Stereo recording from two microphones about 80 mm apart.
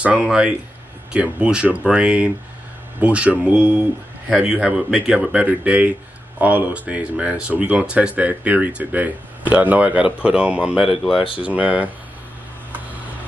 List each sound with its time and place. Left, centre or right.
0.0 s speech: centre